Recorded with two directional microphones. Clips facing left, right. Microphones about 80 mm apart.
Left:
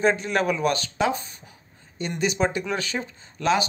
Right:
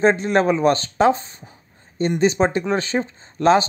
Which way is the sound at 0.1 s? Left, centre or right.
Right.